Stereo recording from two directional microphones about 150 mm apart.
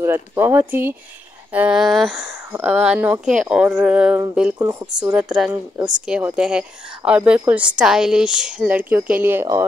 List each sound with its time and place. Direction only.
0.0 s speech: 15° right (ahead or behind)
4.6 s speech: 25° right (ahead or behind)
5.1 s speech: 5° right (ahead or behind)